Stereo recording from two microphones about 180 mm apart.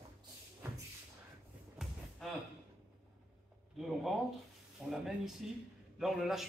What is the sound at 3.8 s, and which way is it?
Speech, centre (ahead or behind).